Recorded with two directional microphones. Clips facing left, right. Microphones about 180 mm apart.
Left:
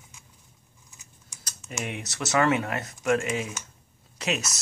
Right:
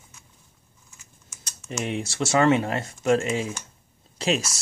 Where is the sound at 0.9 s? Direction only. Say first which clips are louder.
Right 1 dB; 15° left (ahead or behind).